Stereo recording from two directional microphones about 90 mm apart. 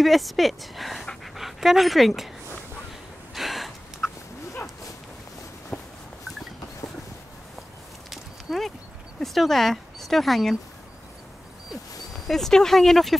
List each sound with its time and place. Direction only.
0.0 s speech: centre (ahead or behind)
3.3 s gasp: centre (ahead or behind)
5.7 s a sound: 15° left (ahead or behind)
8.1 s a sound: centre (ahead or behind)
9.2 s speech: centre (ahead or behind)
12.3 s speech: 5° left (ahead or behind)